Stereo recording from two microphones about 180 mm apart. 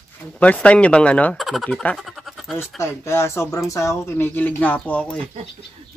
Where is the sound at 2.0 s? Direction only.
Centre (ahead or behind).